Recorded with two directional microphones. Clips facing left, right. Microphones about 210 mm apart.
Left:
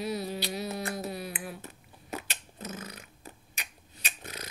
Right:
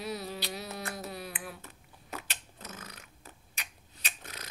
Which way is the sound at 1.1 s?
5° left (ahead or behind).